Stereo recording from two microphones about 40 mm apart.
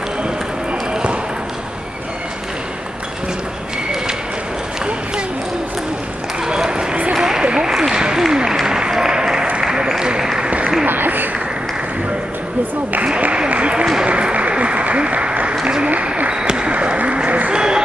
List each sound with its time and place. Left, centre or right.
6.4 s run: centre
7.2 s a sound: centre
7.7 s applause: centre; by 10.7 s right
10.9 s applause: right
13.2 s applause: right
16.3 s basketball bounce: right
17.5 s applause: right